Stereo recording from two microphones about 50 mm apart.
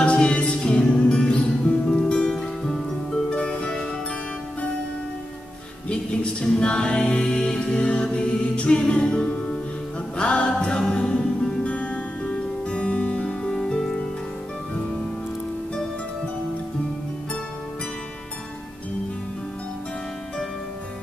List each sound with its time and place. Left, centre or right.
0.0 s music: left
3.3 s music: left
5.9 s music: centre
11.6 s music: left